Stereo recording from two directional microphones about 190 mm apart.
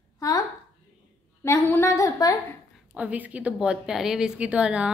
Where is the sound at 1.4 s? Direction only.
15° left (ahead or behind).